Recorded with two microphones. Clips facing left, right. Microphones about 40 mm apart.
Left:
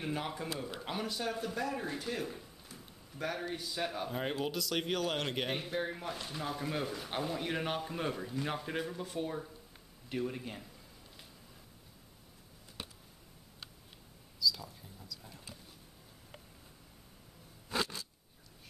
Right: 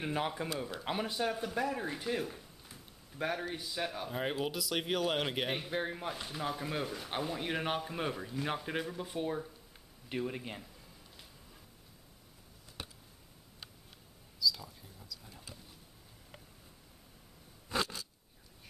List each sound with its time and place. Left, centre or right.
0.0 s speech: centre
3.3 s speech: centre
14.4 s mouse: centre
17.6 s a sound: centre